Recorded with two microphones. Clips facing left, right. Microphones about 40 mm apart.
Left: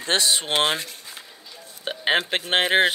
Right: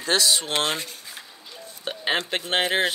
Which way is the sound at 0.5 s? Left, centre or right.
Centre.